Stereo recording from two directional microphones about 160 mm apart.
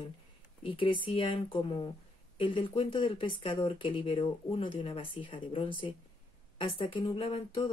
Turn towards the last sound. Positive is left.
turn(degrees=35)  # may be behind; listen again after turning